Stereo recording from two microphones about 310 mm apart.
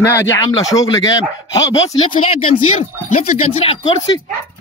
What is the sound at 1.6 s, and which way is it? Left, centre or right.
Speech, left.